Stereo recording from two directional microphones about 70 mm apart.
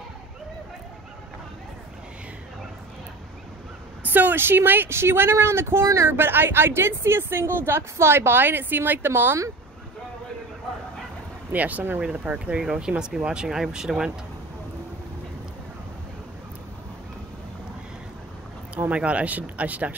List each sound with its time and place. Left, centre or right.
4.0 s a woman's voice: right
11.5 s speech: right
18.8 s speech: centre